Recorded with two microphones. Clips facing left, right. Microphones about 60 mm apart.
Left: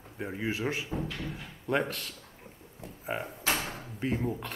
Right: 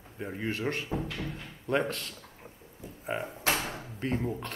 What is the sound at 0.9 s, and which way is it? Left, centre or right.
Speech, right.